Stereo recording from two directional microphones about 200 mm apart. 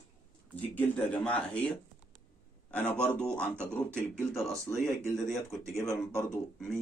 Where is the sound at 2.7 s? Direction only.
10° left (ahead or behind).